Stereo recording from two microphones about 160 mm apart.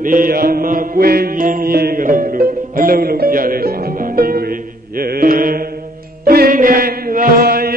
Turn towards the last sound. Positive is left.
turn(degrees=-70)  # may be behind; listen again after turning